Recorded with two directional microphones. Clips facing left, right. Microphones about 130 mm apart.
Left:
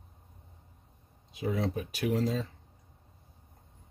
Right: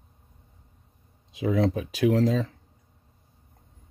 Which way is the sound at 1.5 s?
90° right.